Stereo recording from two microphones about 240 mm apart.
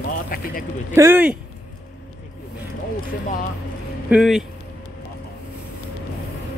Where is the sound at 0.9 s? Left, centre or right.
Centre.